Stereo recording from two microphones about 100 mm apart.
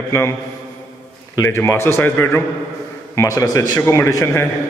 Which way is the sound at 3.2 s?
35° left (ahead or behind).